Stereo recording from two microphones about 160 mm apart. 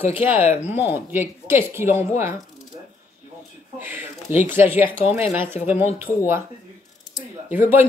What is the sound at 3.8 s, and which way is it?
Speech, 10° right (ahead or behind).